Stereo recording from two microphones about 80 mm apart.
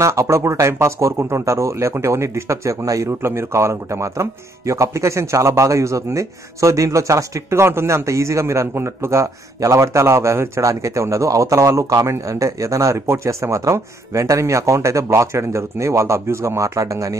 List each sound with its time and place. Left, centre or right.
0.0 s speech: right